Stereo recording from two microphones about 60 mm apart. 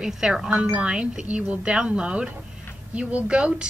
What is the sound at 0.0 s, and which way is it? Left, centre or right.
A woman's voice, centre.